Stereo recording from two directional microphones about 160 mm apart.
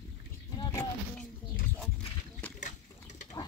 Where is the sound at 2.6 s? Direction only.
50° left (ahead or behind).